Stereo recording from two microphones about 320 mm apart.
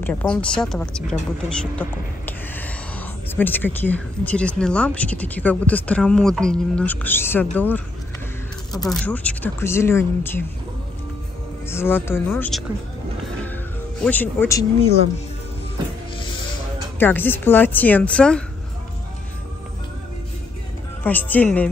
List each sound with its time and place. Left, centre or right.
0.0 s speech: centre
1.6 s a sound: centre
3.3 s speech: centre
8.8 s speech: centre
11.7 s speech: centre
14.0 s speech: centre
17.0 s speech: centre
21.0 s speech: centre